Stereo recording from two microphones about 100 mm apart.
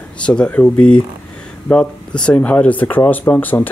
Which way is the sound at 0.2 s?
10° left (ahead or behind).